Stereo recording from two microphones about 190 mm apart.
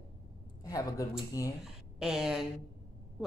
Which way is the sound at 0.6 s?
20° left (ahead or behind).